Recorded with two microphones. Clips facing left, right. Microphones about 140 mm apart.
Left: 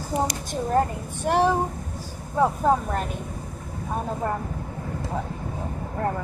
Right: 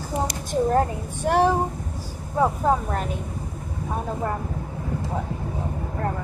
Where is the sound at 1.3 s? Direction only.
5° left (ahead or behind).